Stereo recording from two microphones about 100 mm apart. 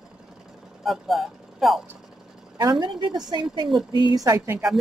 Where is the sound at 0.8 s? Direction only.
Centre (ahead or behind).